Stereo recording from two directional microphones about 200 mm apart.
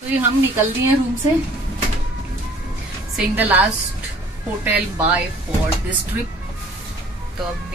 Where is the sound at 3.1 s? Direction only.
10° right (ahead or behind).